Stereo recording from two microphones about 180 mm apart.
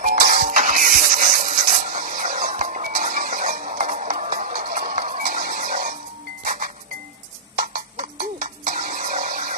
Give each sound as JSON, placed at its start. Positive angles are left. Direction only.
{"t": 0.0, "sound": "music", "side_deg": -50}